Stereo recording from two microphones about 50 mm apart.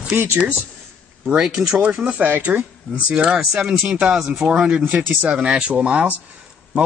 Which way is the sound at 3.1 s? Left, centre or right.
Centre.